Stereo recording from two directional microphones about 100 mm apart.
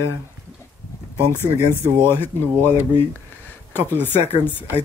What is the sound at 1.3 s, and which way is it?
Speech, 25° left (ahead or behind).